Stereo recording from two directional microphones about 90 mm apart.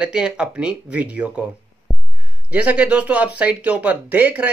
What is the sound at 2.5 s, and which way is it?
Speech, 15° right (ahead or behind).